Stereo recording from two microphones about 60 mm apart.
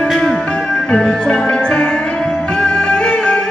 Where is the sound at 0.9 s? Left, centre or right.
Centre.